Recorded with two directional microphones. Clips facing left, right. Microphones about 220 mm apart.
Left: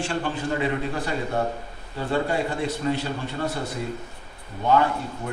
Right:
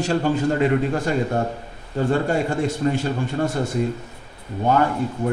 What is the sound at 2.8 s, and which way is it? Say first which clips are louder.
Speech: right 3 dB; 40° right (ahead or behind).